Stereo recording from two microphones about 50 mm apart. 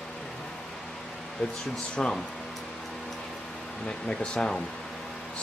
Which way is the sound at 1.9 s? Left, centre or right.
Centre.